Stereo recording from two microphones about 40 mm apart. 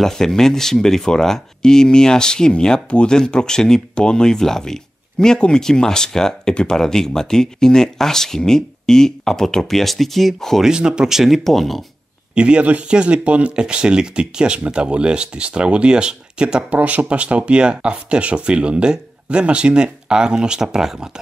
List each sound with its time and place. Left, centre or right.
0.0 s speech: centre
10.6 s speech: centre
12.4 s speech: right
13.6 s speech: right
16.7 s speech: right; by 21.1 s centre